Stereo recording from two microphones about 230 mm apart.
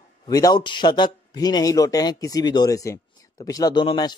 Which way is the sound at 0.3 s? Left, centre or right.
Centre.